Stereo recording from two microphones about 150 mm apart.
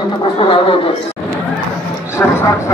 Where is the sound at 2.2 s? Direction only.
15° left (ahead or behind).